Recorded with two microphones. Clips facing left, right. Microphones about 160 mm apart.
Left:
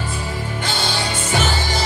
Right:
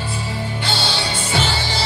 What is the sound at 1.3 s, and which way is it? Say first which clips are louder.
Music: left 1 dB; 45° left (ahead or behind).